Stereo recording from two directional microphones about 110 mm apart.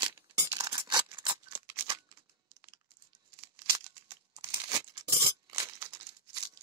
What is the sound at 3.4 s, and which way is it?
Crumpling, 30° right (ahead or behind).